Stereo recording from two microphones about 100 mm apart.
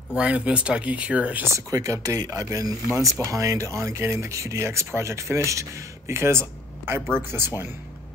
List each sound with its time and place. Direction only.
0.1 s speech: 10° right (ahead or behind)
1.4 s speech: 35° right (ahead or behind)